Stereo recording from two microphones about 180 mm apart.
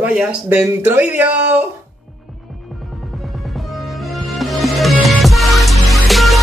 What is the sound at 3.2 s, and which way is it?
Music, centre (ahead or behind).